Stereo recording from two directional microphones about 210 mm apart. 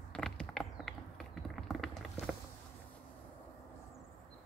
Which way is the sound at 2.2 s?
30° left (ahead or behind).